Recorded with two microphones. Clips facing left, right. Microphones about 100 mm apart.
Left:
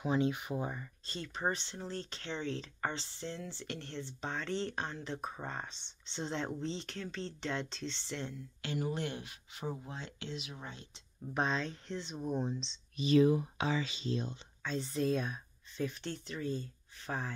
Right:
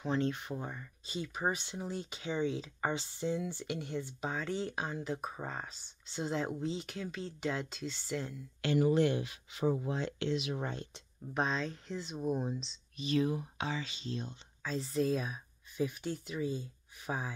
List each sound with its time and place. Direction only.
0.0 s speech: 10° left (ahead or behind)
1.0 s speech: 10° right (ahead or behind)
8.6 s speech: 90° right; by 10.9 s 55° right (ahead or behind)
11.3 s speech: centre (ahead or behind)
14.6 s speech: centre (ahead or behind)